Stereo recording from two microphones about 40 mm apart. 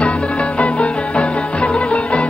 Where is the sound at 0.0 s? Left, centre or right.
Left.